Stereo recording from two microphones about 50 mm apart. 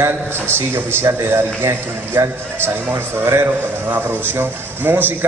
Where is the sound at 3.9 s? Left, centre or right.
Right.